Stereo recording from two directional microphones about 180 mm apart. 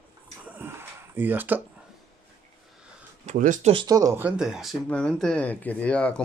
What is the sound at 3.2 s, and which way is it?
Speech, 45° right (ahead or behind).